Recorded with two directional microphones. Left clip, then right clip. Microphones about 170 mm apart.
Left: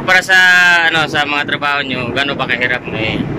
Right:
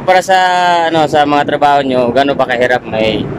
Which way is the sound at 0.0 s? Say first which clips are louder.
Even; 35° right (ahead or behind).